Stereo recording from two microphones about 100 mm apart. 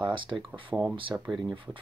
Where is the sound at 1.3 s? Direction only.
Centre (ahead or behind).